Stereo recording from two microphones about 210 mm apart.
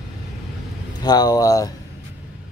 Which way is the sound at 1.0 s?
20° left (ahead or behind).